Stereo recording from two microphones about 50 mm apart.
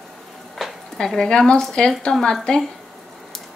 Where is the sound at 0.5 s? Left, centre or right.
Centre.